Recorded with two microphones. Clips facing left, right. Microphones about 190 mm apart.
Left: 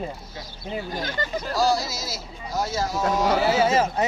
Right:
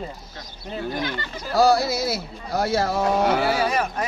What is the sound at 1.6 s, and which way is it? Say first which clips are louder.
Speech: right 6 dB; 60° right (ahead or behind).